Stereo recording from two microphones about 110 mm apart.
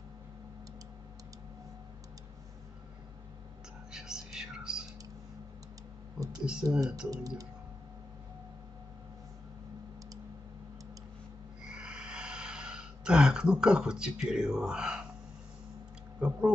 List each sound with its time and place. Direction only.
3.9 s whispering: 5° right (ahead or behind)
6.1 s computer keyboard: 35° right (ahead or behind)
6.6 s speech: 30° right (ahead or behind)
11.7 s a sound: 10° right (ahead or behind)
14.3 s speech: 5° right (ahead or behind)
16.2 s speech: 10° right (ahead or behind)